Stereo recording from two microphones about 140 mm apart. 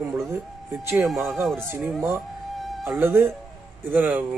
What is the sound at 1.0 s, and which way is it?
Speech, centre (ahead or behind).